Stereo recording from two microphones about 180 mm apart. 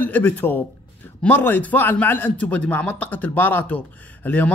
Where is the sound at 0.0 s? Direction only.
10° left (ahead or behind).